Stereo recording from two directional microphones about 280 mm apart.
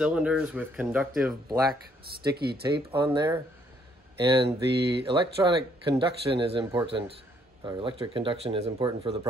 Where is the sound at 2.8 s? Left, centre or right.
Centre.